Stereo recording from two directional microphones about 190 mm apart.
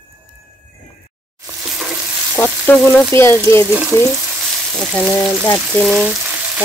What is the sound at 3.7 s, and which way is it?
Frying, 15° right (ahead or behind).